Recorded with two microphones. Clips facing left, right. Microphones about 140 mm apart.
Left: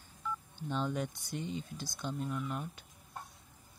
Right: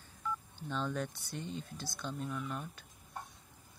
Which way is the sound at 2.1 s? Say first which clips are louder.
Left 2 dB; 5° left (ahead or behind).